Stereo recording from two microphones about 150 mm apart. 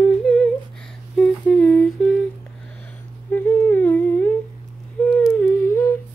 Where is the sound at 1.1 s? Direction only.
5° left (ahead or behind).